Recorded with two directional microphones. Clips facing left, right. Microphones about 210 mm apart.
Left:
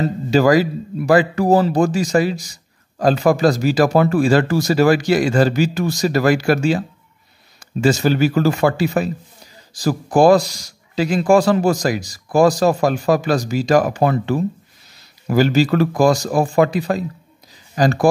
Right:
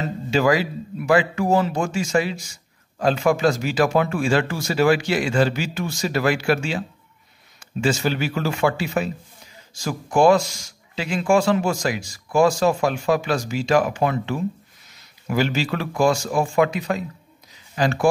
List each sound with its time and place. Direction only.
0.0 s speech: 40° left (ahead or behind)
7.8 s speech: 40° left (ahead or behind)